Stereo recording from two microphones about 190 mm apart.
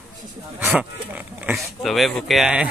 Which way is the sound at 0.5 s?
10° right (ahead or behind).